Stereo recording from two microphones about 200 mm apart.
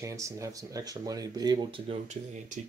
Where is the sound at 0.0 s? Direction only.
15° right (ahead or behind); by 2.6 s 30° right (ahead or behind).